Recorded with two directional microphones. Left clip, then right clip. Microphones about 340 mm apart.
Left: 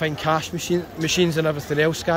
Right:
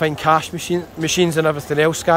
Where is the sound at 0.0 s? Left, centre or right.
Centre.